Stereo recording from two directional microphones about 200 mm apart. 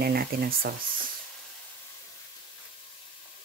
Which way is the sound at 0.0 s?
50° right (ahead or behind).